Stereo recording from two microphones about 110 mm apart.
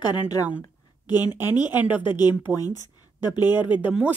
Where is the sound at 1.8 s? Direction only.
15° right (ahead or behind).